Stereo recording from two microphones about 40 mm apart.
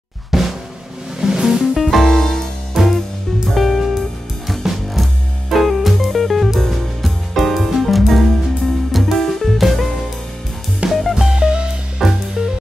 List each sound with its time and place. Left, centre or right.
0.3 s drum: centre
1.2 s music: centre
1.8 s music: centre
2.8 s music: centre
11.2 s music: centre
12.0 s music: centre